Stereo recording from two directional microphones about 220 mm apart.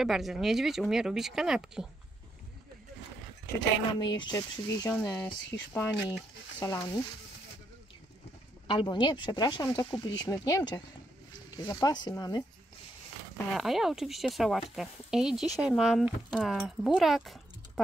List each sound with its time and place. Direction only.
0.0 s speech: centre (ahead or behind)
3.9 s speech: 20° left (ahead or behind)
8.6 s speech: 20° left (ahead or behind)
13.6 s speech: centre (ahead or behind)